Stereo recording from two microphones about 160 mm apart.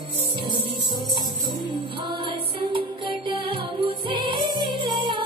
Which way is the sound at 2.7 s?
30° right (ahead or behind).